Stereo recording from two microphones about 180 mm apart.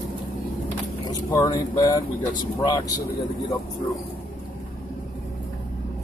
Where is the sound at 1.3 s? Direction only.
20° left (ahead or behind).